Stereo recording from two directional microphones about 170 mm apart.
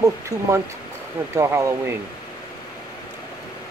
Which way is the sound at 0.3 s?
20° right (ahead or behind).